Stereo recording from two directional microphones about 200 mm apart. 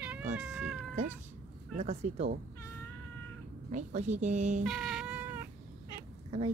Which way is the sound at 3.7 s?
35° right (ahead or behind).